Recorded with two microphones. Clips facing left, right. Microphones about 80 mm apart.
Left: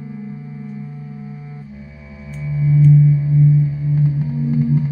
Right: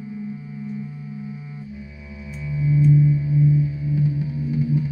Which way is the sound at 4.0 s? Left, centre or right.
Left.